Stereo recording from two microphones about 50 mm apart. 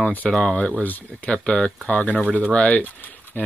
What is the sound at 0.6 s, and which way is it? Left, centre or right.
Speech, left.